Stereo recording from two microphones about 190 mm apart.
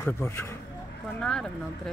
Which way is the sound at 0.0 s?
10° left (ahead or behind).